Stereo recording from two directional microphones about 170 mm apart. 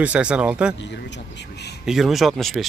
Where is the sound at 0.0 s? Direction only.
5° right (ahead or behind).